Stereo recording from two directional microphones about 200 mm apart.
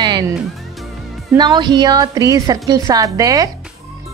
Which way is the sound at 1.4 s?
20° right (ahead or behind).